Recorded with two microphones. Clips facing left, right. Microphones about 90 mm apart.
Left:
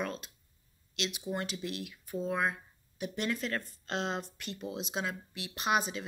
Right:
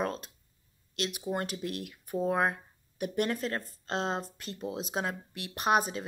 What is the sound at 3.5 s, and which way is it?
Speech, 35° right (ahead or behind).